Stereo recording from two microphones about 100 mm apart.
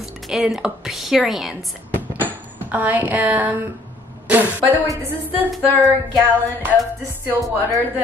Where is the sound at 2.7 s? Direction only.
15° right (ahead or behind).